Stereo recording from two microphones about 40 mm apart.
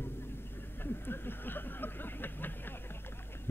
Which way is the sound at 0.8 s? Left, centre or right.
Left.